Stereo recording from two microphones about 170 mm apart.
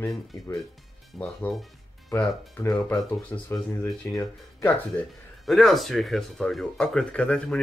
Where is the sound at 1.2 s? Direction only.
5° left (ahead or behind).